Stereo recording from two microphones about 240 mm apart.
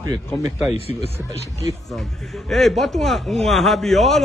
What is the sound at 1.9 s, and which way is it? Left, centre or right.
A man's voice, centre.